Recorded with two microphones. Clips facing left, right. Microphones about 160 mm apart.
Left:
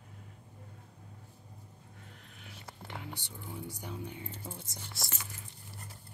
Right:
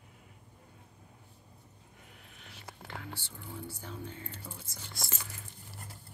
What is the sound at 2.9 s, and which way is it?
Speech, 20° left (ahead or behind).